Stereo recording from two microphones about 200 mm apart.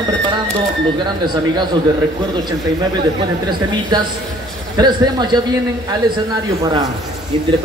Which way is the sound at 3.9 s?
20° right (ahead or behind).